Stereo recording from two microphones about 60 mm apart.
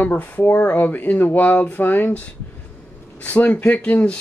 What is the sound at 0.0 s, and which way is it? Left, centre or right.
Speech, left.